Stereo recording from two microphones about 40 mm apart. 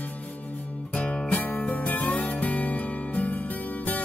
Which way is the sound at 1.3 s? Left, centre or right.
Left.